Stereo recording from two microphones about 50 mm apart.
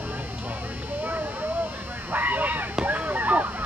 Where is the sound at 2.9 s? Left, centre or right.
Right.